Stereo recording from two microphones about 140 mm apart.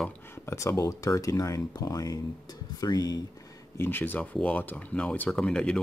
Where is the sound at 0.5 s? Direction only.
20° left (ahead or behind).